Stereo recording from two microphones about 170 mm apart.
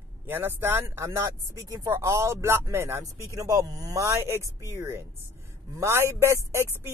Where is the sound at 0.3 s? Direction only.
15° right (ahead or behind).